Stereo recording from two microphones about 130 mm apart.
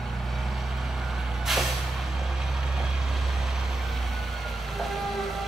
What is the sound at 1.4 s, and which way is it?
Vehicle, centre (ahead or behind).